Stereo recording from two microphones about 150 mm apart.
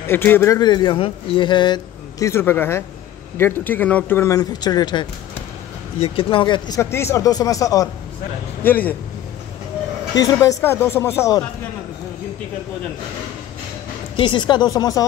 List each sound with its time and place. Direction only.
0.0 s speech: 15° left (ahead or behind)
0.6 s a man's voice: 30° left (ahead or behind)
5.9 s speech: 40° left (ahead or behind)
6.8 s a man's voice: 15° left (ahead or behind)
8.6 s speech: 10° left (ahead or behind)
10.1 s speech: 25° left (ahead or behind)
14.1 s a man's voice: 35° left (ahead or behind)